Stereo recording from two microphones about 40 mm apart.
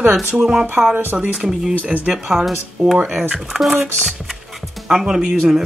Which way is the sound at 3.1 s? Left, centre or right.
Centre.